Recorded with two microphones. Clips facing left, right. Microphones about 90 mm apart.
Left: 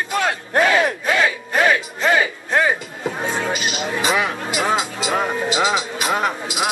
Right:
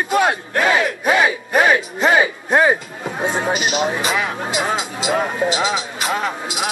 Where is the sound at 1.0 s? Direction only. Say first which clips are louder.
Right 3 dB; 20° right (ahead or behind).